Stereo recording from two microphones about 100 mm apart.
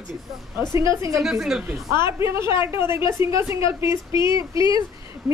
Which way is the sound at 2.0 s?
25° right (ahead or behind).